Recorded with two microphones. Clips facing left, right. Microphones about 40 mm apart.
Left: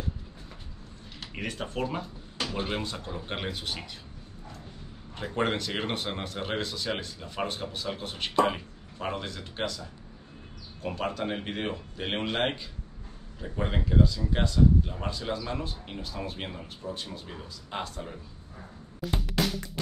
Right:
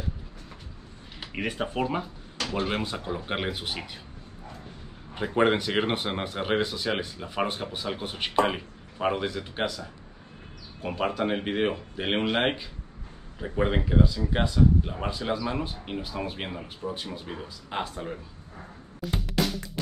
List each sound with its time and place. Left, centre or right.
1.2 s speech: centre
2.4 s a sound: centre
2.7 s speech: centre
5.1 s speech: centre
10.8 s speech: centre
13.4 s speech: right
18.9 s music: centre